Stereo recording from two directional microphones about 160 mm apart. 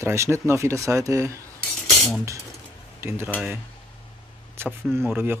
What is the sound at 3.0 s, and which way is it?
Speech, 15° right (ahead or behind).